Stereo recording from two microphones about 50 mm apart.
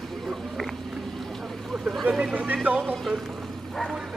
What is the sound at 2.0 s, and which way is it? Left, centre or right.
Speech, centre.